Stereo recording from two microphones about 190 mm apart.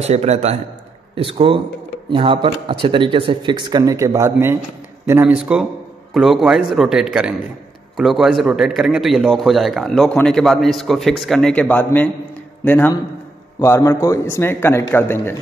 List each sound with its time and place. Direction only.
0.0 s a man's voice: 35° right (ahead or behind); by 15.3 s 10° left (ahead or behind)